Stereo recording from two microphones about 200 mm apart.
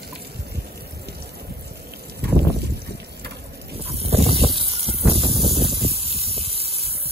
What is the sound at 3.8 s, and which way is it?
Vehicle, 30° right (ahead or behind).